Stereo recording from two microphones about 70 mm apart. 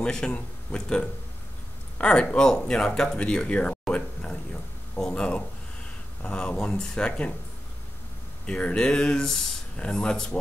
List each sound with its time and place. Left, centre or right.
0.0 s speech: centre
8.5 s speech: centre